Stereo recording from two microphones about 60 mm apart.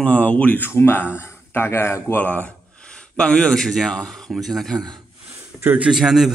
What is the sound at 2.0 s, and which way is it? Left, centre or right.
Speech, left.